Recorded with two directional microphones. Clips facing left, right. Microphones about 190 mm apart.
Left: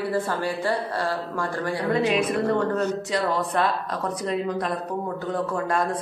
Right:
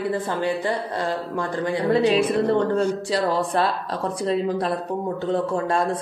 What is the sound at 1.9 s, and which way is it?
Speech, 30° right (ahead or behind).